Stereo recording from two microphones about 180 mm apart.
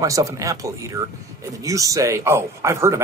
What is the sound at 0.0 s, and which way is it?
Speech, 20° right (ahead or behind).